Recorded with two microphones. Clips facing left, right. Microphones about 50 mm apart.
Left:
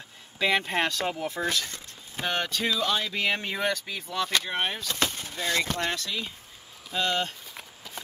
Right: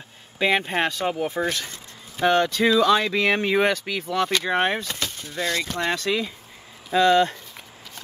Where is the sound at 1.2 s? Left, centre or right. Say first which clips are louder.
Right 4 dB; right.